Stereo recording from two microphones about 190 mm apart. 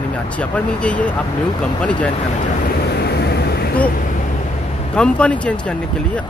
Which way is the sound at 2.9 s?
60° left (ahead or behind).